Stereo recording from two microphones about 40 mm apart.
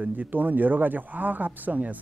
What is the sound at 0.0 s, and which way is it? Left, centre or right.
Speech, right.